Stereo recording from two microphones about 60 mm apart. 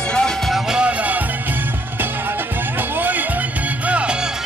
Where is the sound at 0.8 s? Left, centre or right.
Right.